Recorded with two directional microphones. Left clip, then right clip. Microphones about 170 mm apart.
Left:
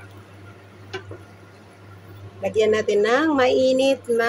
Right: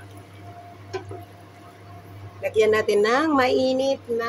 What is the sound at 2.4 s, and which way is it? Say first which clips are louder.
A woman's voice: even; 5° left (ahead or behind).